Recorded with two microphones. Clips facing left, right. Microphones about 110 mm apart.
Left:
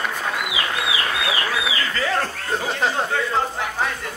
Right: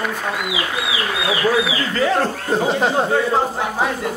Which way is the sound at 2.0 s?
20° right (ahead or behind).